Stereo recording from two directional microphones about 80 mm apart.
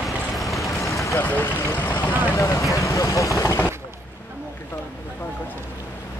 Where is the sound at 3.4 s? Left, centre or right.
Left.